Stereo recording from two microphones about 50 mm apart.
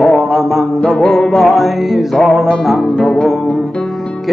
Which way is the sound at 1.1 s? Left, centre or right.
Centre.